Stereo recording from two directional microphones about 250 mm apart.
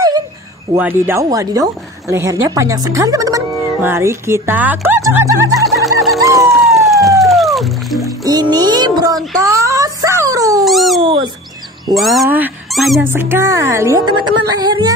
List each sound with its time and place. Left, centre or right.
0.7 s speech: centre
5.5 s a sound: centre
8.2 s a sound: centre
10.6 s dog: centre
11.0 s speech: centre
11.9 s speech: centre